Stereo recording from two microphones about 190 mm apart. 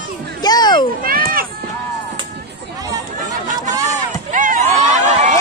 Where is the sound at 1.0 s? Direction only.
50° right (ahead or behind).